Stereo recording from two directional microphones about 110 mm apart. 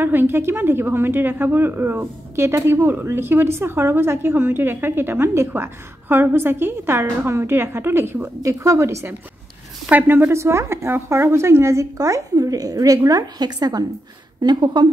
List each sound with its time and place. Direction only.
0.0 s a woman's voice: 20° right (ahead or behind); by 14.9 s 40° right (ahead or behind)